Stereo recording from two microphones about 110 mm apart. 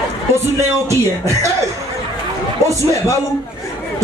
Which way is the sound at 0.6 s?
25° right (ahead or behind).